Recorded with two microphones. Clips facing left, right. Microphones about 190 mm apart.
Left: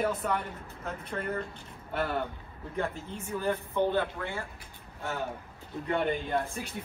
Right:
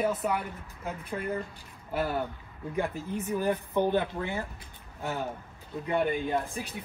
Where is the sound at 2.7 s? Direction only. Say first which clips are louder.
Right 3 dB; 15° right (ahead or behind).